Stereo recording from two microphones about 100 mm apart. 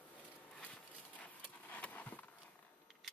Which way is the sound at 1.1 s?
15° left (ahead or behind).